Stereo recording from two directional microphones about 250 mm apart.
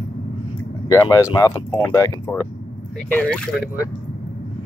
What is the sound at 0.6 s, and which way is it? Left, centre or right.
Speech, centre.